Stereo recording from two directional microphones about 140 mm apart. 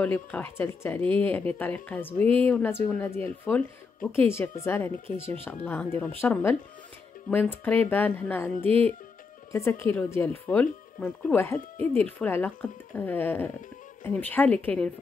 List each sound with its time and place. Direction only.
0.0 s speech: 10° left (ahead or behind)
9.5 s speech: 20° left (ahead or behind)